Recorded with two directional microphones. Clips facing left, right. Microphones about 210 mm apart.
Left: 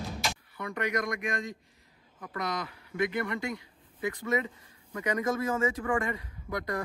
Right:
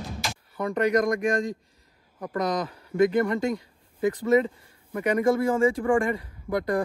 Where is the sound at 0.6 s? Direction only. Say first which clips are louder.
Right 9 dB; 40° right (ahead or behind).